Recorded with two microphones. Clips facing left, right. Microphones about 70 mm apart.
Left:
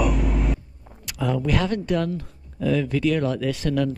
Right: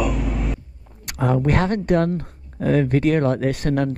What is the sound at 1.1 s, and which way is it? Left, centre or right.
Speech, right.